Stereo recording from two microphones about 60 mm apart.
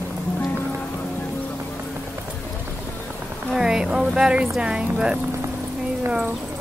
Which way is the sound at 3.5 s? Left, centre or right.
Centre.